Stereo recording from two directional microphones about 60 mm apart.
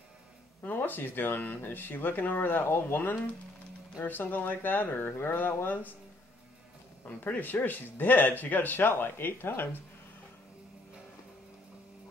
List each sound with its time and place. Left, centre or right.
0.6 s speech: left
7.1 s speech: left